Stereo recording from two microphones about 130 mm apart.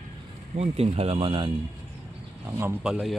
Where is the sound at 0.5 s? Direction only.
55° right (ahead or behind).